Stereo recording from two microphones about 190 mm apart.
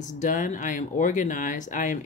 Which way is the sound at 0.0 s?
40° left (ahead or behind).